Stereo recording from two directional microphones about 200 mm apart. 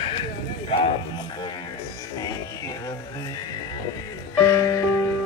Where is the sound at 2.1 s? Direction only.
20° left (ahead or behind).